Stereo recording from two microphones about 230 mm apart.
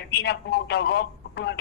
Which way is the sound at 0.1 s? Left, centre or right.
Left.